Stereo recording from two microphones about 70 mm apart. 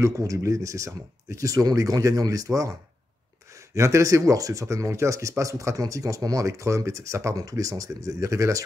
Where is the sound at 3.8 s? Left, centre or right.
Right.